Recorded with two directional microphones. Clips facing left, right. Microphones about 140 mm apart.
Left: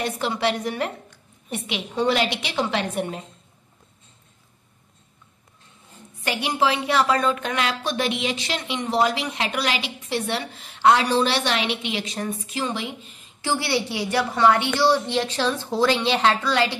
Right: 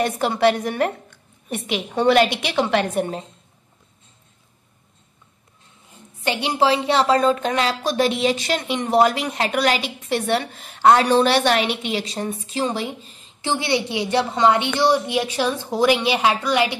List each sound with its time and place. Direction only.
0.0 s a woman's voice: 50° right (ahead or behind)
6.2 s speech: 25° right (ahead or behind)